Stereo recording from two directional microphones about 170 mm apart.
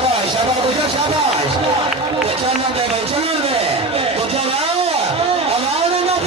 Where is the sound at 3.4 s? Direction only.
35° right (ahead or behind).